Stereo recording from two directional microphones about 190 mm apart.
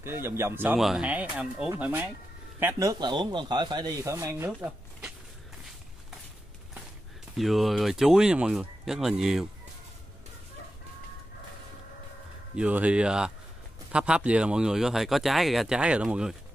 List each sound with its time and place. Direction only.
0.0 s speech: 15° right (ahead or behind)
7.3 s speech: centre (ahead or behind)
12.5 s speech: 5° right (ahead or behind)